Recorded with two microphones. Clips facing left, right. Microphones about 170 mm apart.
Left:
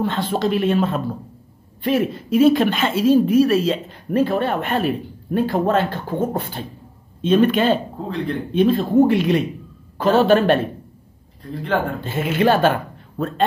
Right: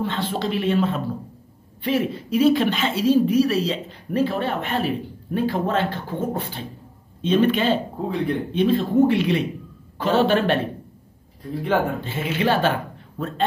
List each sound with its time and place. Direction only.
0.0 s speech: 45° left (ahead or behind)
11.5 s speech: 10° right (ahead or behind)
12.0 s speech: 45° left (ahead or behind)